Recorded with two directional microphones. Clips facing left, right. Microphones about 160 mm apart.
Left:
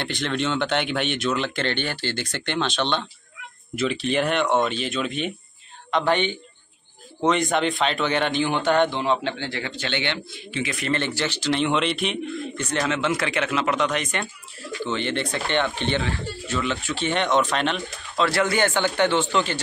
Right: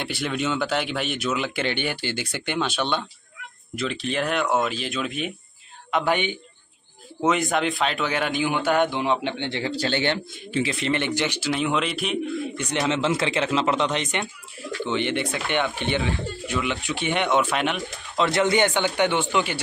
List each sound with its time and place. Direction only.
0.0 s speech: 5° right (ahead or behind)
3.7 s speech: centre (ahead or behind); by 10.7 s 40° right (ahead or behind)
10.7 s speech: 20° right (ahead or behind); by 12.4 s centre (ahead or behind)
12.5 s a man's voice: 15° right (ahead or behind)